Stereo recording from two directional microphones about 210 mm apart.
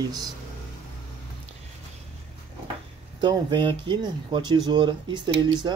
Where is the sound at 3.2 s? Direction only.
20° right (ahead or behind).